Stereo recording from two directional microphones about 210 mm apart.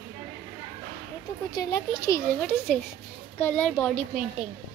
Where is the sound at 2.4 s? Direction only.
Centre (ahead or behind).